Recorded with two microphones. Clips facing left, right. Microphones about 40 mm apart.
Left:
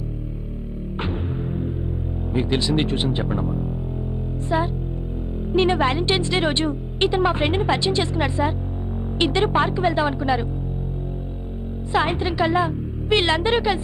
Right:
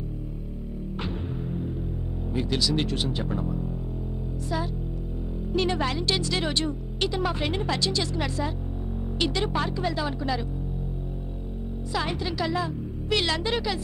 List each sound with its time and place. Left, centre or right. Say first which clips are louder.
1.0 s music: left 7 dB; left
2.3 s speech: left 5 dB; left
5.5 s speech: left 7 dB; left
11.9 s speech: left 8 dB; left